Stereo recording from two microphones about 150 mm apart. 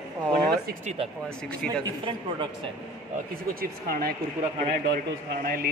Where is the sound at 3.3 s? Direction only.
80° right.